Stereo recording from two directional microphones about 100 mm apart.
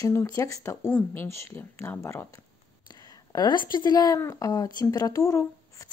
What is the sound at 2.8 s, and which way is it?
A woman's voice, 40° left (ahead or behind).